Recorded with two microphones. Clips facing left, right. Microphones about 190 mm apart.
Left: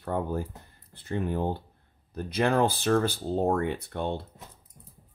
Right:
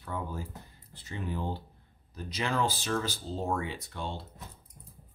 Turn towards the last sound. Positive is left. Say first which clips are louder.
# left 7 dB
turn(degrees=60)  # may be behind; listen again after turning